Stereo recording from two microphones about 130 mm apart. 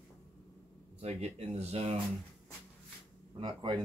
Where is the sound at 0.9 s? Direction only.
55° right (ahead or behind).